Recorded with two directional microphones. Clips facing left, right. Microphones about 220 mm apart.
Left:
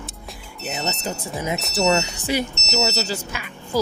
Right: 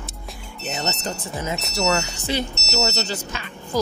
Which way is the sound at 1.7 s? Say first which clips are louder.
Left 3 dB; 25° left (ahead or behind).